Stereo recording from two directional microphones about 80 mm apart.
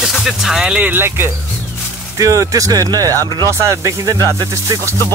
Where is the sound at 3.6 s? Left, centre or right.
Right.